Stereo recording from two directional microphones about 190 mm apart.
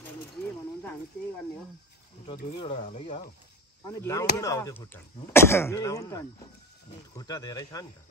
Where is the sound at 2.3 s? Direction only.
30° left (ahead or behind).